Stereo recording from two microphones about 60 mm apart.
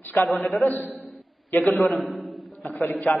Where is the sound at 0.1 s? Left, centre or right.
Left.